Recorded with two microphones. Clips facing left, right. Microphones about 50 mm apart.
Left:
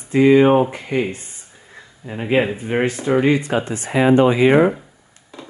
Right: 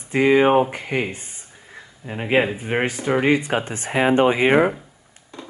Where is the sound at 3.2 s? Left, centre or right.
Right.